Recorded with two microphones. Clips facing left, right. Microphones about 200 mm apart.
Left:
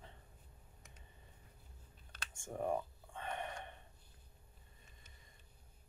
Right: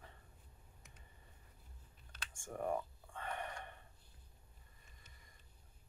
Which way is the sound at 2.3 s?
20° left (ahead or behind).